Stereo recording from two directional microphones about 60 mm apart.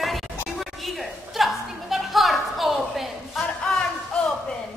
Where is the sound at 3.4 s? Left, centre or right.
Centre.